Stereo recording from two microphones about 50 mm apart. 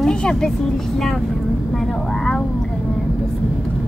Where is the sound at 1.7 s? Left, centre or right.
Centre.